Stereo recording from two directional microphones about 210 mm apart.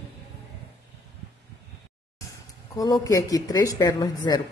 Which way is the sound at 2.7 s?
15° left (ahead or behind).